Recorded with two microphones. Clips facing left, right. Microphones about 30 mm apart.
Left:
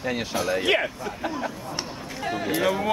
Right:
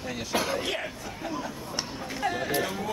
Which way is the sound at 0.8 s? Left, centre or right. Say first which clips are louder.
Left 6 dB; left.